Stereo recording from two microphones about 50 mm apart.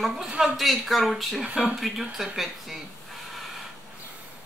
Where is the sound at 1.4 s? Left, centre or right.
Centre.